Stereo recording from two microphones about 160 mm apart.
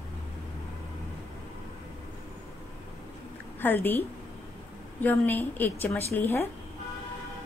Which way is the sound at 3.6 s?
10° left (ahead or behind).